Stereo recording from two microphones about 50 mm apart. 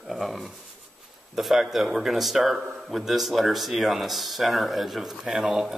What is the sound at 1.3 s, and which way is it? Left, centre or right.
A man's voice, centre.